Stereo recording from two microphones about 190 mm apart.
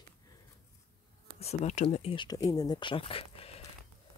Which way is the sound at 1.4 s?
35° left (ahead or behind).